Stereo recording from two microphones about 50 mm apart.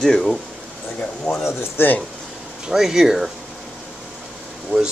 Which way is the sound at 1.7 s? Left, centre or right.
Left.